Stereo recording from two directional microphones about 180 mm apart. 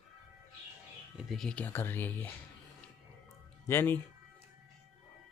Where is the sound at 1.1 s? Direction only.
Centre (ahead or behind).